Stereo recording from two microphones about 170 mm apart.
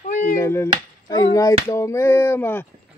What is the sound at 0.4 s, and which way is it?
Speech, 15° left (ahead or behind).